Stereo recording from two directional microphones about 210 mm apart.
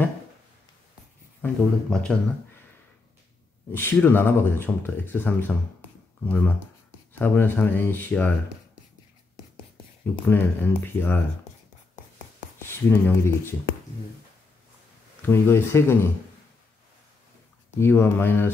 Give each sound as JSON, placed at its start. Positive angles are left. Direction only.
{"t": 1.4, "sound": "speech", "side_deg": 5}
{"t": 3.7, "sound": "speech", "side_deg": 10}
{"t": 10.2, "sound": "speech", "side_deg": 10}
{"t": 11.5, "sound": "writing", "side_deg": 30}
{"t": 12.5, "sound": "speech", "side_deg": 10}
{"t": 15.2, "sound": "speech", "side_deg": 10}
{"t": 17.7, "sound": "speech", "side_deg": 10}